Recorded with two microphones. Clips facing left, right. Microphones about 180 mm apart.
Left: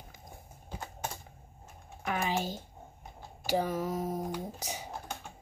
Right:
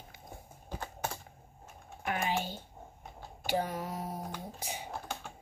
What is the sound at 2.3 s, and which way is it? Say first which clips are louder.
Speech: left 2 dB; 40° left (ahead or behind).